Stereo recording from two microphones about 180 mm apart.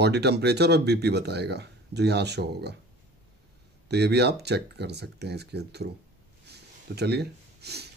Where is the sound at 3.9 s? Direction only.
65° right (ahead or behind).